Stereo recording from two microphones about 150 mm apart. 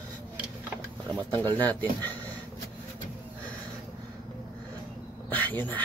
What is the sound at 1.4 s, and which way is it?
Speech, 10° left (ahead or behind).